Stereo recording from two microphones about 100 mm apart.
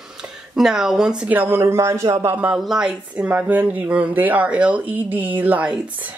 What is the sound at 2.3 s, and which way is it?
Speech, 15° right (ahead or behind).